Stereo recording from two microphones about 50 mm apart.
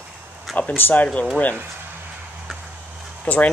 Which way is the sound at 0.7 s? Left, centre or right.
Left.